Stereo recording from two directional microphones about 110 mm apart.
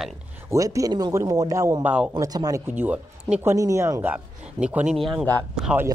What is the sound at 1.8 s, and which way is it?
Speech, 15° right (ahead or behind).